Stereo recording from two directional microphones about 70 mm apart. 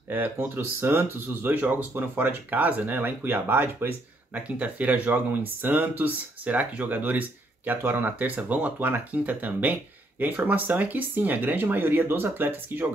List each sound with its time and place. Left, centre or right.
0.1 s speech: right